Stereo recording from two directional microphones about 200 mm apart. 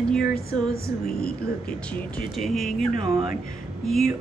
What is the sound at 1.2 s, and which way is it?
Speech, 50° left (ahead or behind).